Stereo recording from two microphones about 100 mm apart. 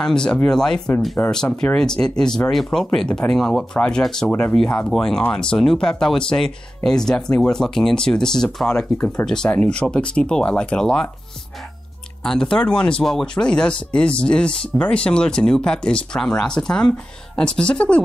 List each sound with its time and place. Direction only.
0.0 s speech: 5° left (ahead or behind)
4.3 s speech: 15° left (ahead or behind)
8.9 s speech: 15° left (ahead or behind)
9.2 s speech: 5° left (ahead or behind)
12.2 s speech: 5° left (ahead or behind)